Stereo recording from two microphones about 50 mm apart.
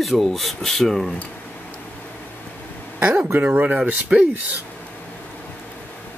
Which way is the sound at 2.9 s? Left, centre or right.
Right.